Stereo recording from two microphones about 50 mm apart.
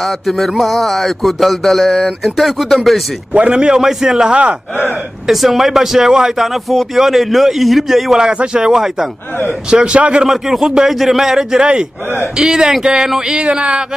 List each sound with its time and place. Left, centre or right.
0.0 s speech: centre
3.5 s a man's voice: centre
5.2 s speech: centre
8.2 s a man's voice: centre
8.7 s a man's voice: centre
9.7 s a sound: centre
10.2 s a man's voice: centre
11.6 s a man's voice: centre
13.1 s a sound: centre